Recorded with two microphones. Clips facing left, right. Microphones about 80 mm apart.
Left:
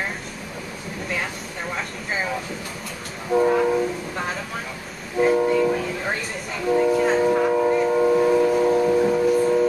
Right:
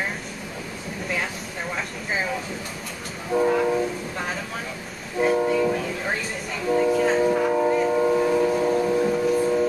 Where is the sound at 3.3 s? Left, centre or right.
Centre.